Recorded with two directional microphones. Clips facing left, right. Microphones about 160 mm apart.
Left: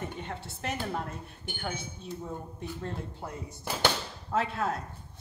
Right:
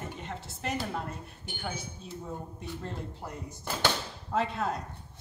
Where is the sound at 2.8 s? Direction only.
Centre (ahead or behind).